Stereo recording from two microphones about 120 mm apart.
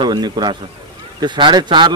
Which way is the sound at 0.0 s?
35° right (ahead or behind).